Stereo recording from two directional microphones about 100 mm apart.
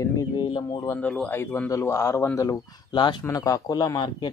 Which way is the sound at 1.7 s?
30° left (ahead or behind).